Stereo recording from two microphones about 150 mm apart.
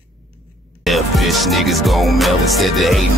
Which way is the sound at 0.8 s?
Centre (ahead or behind).